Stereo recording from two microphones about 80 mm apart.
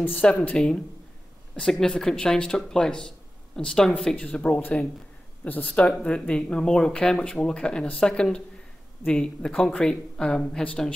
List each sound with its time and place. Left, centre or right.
0.0 s speech: centre